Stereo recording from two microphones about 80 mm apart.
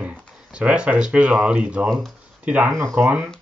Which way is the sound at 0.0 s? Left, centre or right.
Centre.